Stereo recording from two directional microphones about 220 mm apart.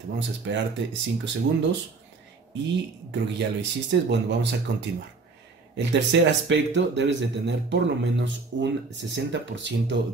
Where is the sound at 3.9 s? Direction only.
55° right (ahead or behind).